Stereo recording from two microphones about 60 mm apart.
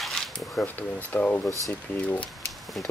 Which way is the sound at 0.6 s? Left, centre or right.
Left.